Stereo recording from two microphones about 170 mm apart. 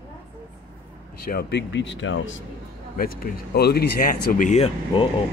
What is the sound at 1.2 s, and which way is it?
Speech, 70° left (ahead or behind).